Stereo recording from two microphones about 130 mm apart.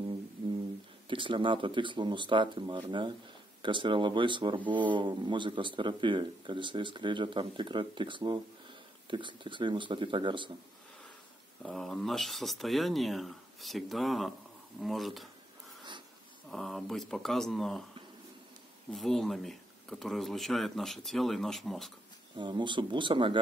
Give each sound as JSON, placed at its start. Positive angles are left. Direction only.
{"t": 1.0, "sound": "speech", "side_deg": -40}
{"t": 11.6, "sound": "speech", "side_deg": 0}
{"t": 16.4, "sound": "speech", "side_deg": 0}
{"t": 18.9, "sound": "speech", "side_deg": 0}
{"t": 22.4, "sound": "speech", "side_deg": -35}